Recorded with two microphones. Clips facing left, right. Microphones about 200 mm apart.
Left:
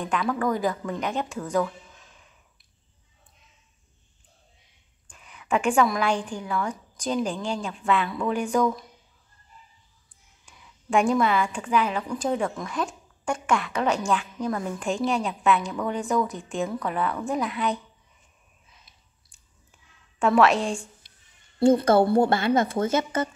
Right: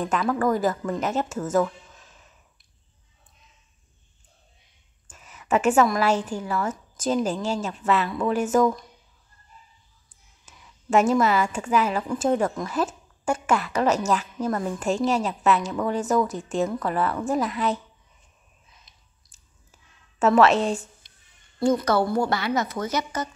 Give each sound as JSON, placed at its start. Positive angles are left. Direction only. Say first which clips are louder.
{"t": 0.0, "sound": "speech", "louder": "right 2 dB", "side_deg": -5}
{"t": 5.1, "sound": "a woman's voice", "louder": "right 2 dB", "side_deg": -5}
{"t": 10.4, "sound": "a sound", "louder": "right 2 dB", "side_deg": -5}
{"t": 11.6, "sound": "speech", "louder": "right 2 dB", "side_deg": -5}
{"t": 16.3, "sound": "speech", "louder": "right 4 dB", "side_deg": -40}
{"t": 16.6, "sound": "speech", "louder": "right 1 dB", "side_deg": 0}
{"t": 19.7, "sound": "a sound", "louder": "right 2 dB", "side_deg": -5}
{"t": 21.9, "sound": "a woman's voice", "louder": "left 3 dB", "side_deg": 50}
{"t": 22.3, "sound": "a woman's voice", "louder": "left 3 dB", "side_deg": 30}